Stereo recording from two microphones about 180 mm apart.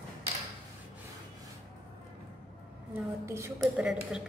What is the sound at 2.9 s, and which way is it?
Speech, 15° right (ahead or behind).